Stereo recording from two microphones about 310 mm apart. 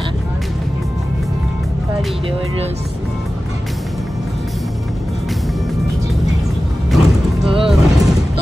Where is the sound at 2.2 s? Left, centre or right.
Centre.